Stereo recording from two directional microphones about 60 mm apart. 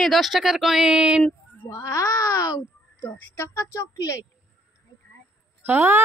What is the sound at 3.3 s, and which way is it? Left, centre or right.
Speech, left.